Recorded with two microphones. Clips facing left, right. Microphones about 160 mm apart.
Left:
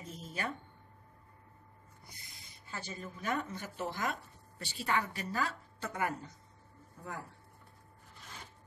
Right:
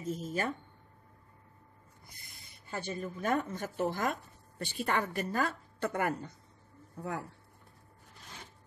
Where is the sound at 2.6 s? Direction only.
55° right (ahead or behind).